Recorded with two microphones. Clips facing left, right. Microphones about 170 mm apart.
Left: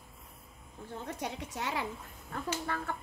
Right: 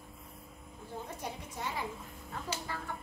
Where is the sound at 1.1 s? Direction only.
75° left (ahead or behind).